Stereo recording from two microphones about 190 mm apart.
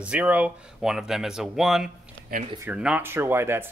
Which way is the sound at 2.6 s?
5° right (ahead or behind).